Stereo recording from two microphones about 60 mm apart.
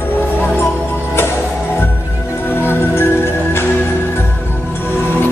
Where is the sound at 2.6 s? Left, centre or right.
Left.